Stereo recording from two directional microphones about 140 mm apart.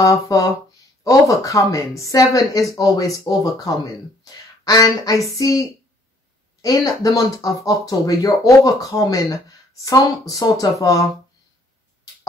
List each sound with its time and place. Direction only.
0.0 s speech: 25° left (ahead or behind)